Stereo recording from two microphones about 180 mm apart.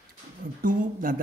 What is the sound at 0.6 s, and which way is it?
Speech, 50° right (ahead or behind).